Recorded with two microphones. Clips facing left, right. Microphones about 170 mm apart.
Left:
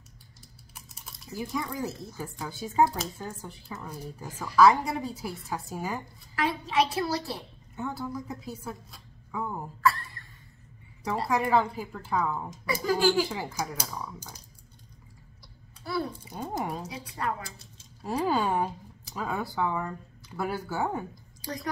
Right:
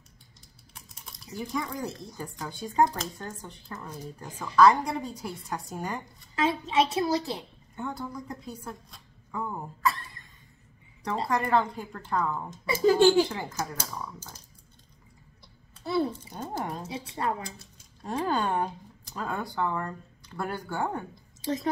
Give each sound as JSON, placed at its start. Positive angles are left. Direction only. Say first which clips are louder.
{"t": 0.7, "sound": "typing", "louder": "even", "side_deg": 5}
{"t": 2.1, "sound": "speech", "louder": "left 1 dB", "side_deg": 5}
{"t": 6.3, "sound": "a woman's voice", "louder": "right 1 dB", "side_deg": -25}
{"t": 7.7, "sound": "a woman's voice", "louder": "left 1 dB", "side_deg": 5}
{"t": 9.8, "sound": "a sound", "louder": "left 3 dB", "side_deg": -20}
{"t": 11.2, "sound": "speech", "louder": "left 1 dB", "side_deg": 5}
{"t": 12.6, "sound": "a woman's voice", "louder": "right 5 dB", "side_deg": -25}
{"t": 13.3, "sound": "speech", "louder": "even", "side_deg": 5}
{"t": 15.8, "sound": "a child's voice", "louder": "right 4 dB", "side_deg": -25}
{"t": 16.3, "sound": "speech", "louder": "left 1 dB", "side_deg": 10}
{"t": 16.8, "sound": "a woman's voice", "louder": "right 2 dB", "side_deg": -25}
{"t": 18.0, "sound": "speech", "louder": "left 1 dB", "side_deg": 5}
{"t": 21.1, "sound": "a sound", "louder": "right 7 dB", "side_deg": -25}